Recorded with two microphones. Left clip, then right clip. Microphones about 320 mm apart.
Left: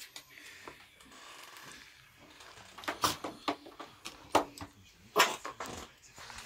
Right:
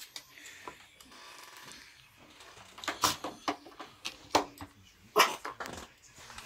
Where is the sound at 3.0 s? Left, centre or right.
Centre.